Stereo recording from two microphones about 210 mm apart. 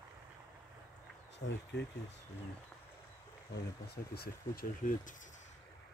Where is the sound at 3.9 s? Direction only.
50° left (ahead or behind).